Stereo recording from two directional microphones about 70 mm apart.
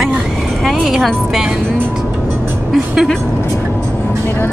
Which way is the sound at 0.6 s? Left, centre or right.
Centre.